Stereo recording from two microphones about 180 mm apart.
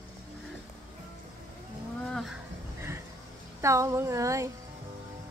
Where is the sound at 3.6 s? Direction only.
15° right (ahead or behind).